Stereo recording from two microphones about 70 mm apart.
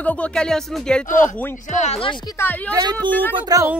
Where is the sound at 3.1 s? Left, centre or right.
Left.